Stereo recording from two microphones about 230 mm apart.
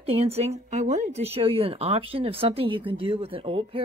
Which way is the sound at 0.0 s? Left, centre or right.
Right.